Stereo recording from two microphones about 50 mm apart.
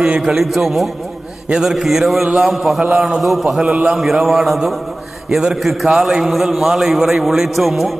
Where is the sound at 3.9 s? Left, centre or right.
Centre.